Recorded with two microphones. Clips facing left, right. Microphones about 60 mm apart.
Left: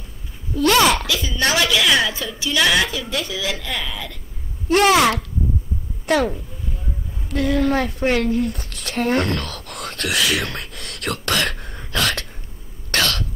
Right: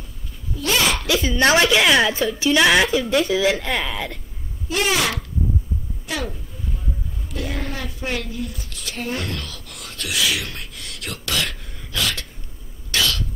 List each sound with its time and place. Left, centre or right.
0.6 s a sound: left
1.2 s a woman's voice: right
4.6 s a woman's voice: left
12.9 s cough: left